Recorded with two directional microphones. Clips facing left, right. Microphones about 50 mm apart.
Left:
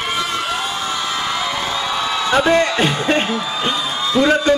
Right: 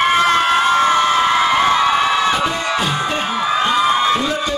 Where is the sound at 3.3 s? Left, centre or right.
Right.